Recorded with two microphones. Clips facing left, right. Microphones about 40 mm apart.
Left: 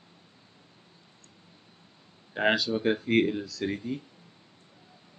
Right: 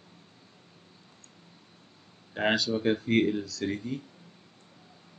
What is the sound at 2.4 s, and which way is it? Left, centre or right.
Speech, centre.